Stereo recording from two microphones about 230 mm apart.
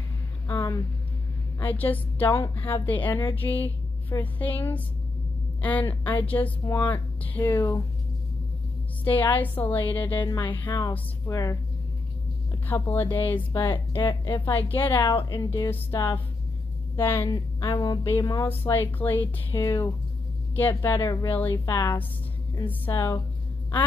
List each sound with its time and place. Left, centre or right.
0.5 s a sound: centre
1.6 s a woman's voice: centre
9.0 s a woman's voice: centre
12.6 s a woman's voice: centre
14.0 s a woman's voice: centre
14.5 s a woman's voice: centre
15.0 s a woman's voice: centre